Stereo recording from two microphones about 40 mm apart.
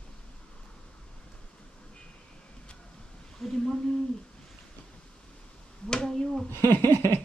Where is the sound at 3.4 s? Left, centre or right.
Centre.